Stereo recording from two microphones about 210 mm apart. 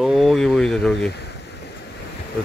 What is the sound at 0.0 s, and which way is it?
Speech, centre (ahead or behind).